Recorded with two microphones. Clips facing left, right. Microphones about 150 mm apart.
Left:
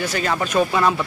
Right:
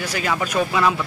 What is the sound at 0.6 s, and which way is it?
Speech, 35° left (ahead or behind).